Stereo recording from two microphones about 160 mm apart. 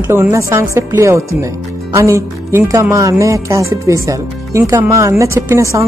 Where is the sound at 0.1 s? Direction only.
15° right (ahead or behind).